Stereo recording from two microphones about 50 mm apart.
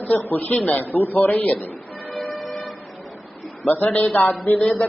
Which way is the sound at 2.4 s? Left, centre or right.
Centre.